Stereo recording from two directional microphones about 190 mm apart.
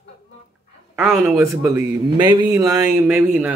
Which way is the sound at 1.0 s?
10° right (ahead or behind).